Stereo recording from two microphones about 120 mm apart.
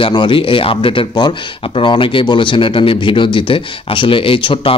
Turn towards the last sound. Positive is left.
turn(degrees=50)  # may be behind; listen again after turning